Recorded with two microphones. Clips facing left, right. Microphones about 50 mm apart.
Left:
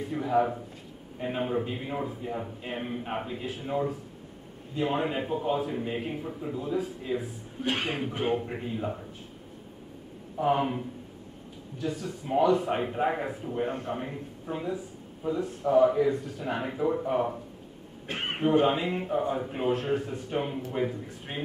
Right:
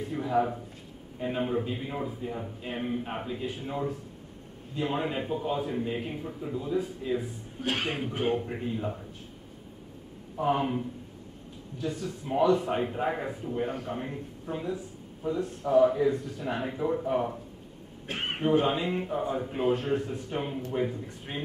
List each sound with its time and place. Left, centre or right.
0.0 s a man's voice: centre
10.4 s a man's voice: centre